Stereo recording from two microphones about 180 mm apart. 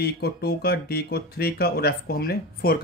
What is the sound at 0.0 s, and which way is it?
Speech, 60° left (ahead or behind).